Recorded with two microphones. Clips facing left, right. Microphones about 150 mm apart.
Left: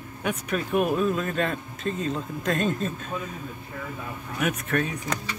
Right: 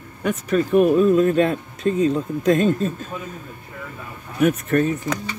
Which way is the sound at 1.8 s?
Centre (ahead or behind).